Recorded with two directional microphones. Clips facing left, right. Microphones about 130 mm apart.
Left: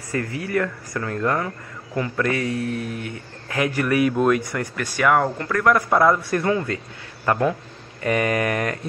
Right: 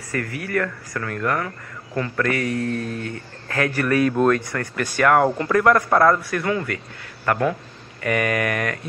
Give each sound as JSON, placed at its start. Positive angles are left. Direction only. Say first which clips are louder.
{"t": 0.1, "sound": "a man's voice", "louder": "left 1 dB", "side_deg": 25}
{"t": 4.7, "sound": "speech", "louder": "right 2 dB", "side_deg": 5}
{"t": 5.2, "sound": "speech", "louder": "right 4 dB", "side_deg": -10}
{"t": 5.7, "sound": "a man's voice", "louder": "even", "side_deg": 5}
{"t": 6.3, "sound": "speech", "louder": "left 2 dB", "side_deg": 25}